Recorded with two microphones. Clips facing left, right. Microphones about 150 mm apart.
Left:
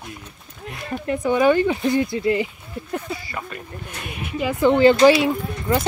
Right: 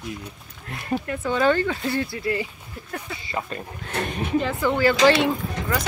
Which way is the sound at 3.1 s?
25° right (ahead or behind).